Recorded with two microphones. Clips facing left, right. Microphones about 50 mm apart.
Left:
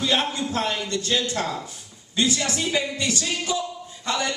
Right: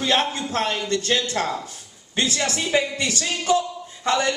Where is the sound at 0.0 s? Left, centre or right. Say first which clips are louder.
Right 2 dB; right.